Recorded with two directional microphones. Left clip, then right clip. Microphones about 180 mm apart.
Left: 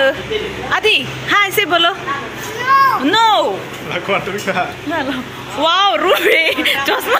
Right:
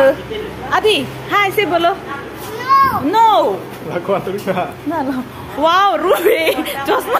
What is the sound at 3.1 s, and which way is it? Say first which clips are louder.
Speech: right 1 dB; 10° right (ahead or behind).